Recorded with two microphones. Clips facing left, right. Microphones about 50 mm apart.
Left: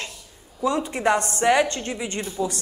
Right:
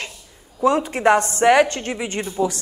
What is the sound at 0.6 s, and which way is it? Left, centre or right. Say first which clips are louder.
A woman's voice: right 5 dB; right.